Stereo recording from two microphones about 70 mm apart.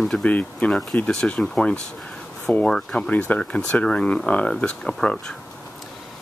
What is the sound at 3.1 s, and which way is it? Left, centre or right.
Speech, left.